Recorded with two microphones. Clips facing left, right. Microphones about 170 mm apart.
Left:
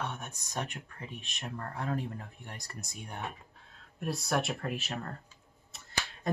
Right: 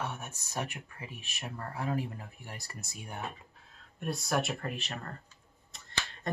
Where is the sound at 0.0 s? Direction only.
5° right (ahead or behind).